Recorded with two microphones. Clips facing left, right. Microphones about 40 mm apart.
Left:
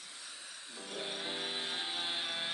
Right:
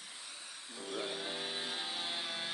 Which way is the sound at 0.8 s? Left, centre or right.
Left.